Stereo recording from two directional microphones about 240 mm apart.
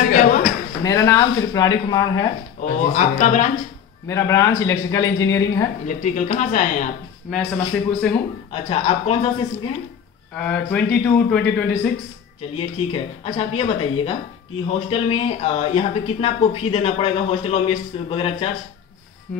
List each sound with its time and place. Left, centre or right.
0.1 s a sound: left
0.8 s speech: centre
2.6 s speech: left
4.1 s speech: centre
5.9 s speech: left
7.2 s a man's voice: centre
8.5 s speech: left
10.3 s a man's voice: centre
12.4 s speech: left